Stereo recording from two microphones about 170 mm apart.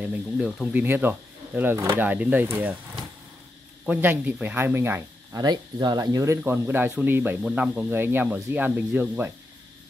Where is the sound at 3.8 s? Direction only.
10° right (ahead or behind).